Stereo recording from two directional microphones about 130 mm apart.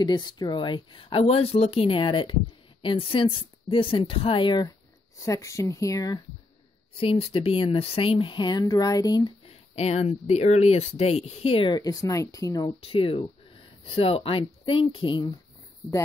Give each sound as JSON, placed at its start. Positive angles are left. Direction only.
{"t": 0.0, "sound": "speech", "side_deg": 35}
{"t": 5.2, "sound": "speech", "side_deg": 25}
{"t": 7.0, "sound": "speech", "side_deg": 45}
{"t": 9.5, "sound": "speech", "side_deg": 55}
{"t": 12.8, "sound": "speech", "side_deg": 45}